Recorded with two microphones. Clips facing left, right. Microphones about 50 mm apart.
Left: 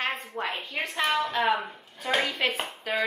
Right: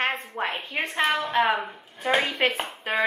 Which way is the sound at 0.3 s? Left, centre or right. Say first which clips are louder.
Right 3 dB; centre.